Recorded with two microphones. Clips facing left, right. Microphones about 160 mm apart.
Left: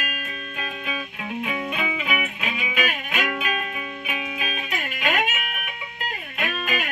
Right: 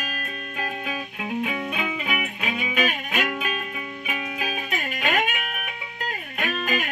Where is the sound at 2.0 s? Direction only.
45° right (ahead or behind).